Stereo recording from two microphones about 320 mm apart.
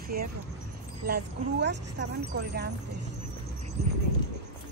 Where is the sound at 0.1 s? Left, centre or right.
Right.